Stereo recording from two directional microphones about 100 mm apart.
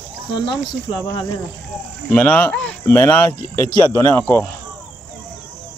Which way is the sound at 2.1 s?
20° left (ahead or behind).